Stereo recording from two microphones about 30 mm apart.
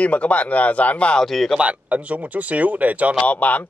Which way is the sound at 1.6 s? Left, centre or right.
Right.